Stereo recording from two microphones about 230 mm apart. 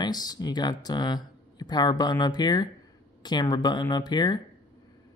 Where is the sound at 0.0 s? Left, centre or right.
Centre.